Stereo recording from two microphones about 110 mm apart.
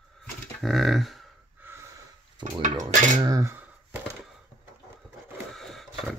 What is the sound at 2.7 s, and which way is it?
Cutlery, 35° right (ahead or behind).